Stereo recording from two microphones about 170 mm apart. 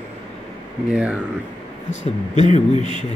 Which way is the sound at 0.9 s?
5° right (ahead or behind).